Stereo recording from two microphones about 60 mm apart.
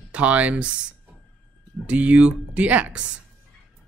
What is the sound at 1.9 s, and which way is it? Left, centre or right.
Speech, right.